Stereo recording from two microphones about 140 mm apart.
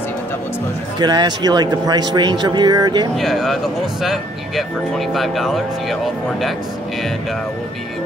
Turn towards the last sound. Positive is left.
turn(degrees=0)  # may be behind; listen again after turning